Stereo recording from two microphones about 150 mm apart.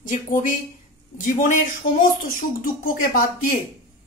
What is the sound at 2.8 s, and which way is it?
Speech, 65° left (ahead or behind).